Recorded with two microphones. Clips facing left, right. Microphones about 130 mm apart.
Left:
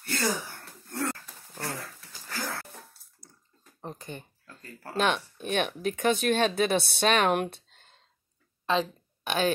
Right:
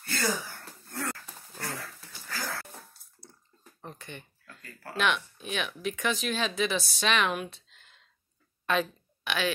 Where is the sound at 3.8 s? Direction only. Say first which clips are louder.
Left 4 dB; 35° left (ahead or behind); by 7.8 s 55° left (ahead or behind).